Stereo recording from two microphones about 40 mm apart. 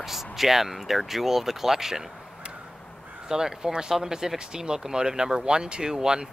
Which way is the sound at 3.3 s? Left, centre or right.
Centre.